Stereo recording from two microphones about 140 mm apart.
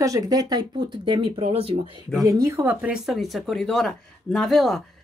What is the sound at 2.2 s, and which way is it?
Speech, 20° right (ahead or behind).